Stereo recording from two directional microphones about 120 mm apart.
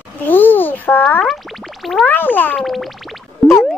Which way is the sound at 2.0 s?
15° left (ahead or behind).